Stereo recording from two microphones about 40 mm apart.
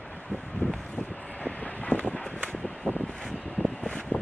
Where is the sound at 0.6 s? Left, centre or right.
Left.